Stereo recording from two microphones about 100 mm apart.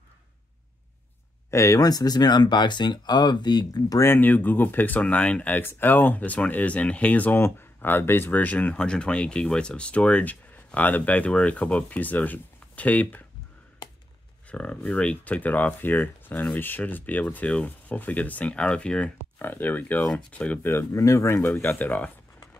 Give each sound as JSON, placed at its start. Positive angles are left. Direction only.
{"t": 1.5, "sound": "speech", "side_deg": 30}
{"t": 4.0, "sound": "speech", "side_deg": 20}
{"t": 14.5, "sound": "speech", "side_deg": 10}
{"t": 19.3, "sound": "speech", "side_deg": 20}